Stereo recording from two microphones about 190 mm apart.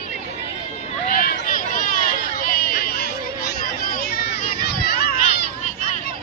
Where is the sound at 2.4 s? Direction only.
50° left (ahead or behind).